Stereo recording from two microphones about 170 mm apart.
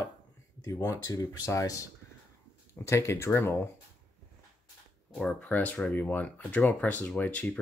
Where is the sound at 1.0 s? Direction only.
20° left (ahead or behind).